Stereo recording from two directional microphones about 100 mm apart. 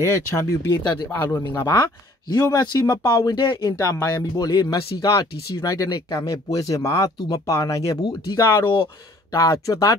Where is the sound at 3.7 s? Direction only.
30° left (ahead or behind).